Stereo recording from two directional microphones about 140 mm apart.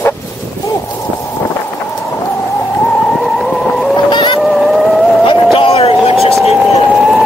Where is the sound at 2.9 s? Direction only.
5° left (ahead or behind).